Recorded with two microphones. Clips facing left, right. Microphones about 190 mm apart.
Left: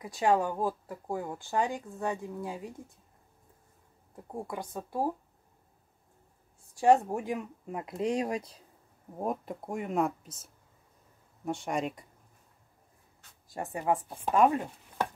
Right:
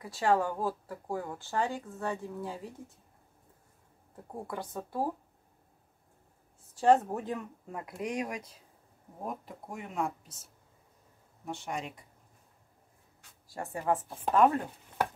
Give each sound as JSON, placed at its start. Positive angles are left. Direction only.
{"t": 0.0, "sound": "speech", "side_deg": 15}
{"t": 4.5, "sound": "speech", "side_deg": 15}
{"t": 6.7, "sound": "speech", "side_deg": 10}
{"t": 9.2, "sound": "speech", "side_deg": 50}
{"t": 11.4, "sound": "speech", "side_deg": 50}
{"t": 13.5, "sound": "a woman's voice", "side_deg": 20}
{"t": 14.0, "sound": "speech", "side_deg": 0}
{"t": 14.3, "sound": "speech", "side_deg": 15}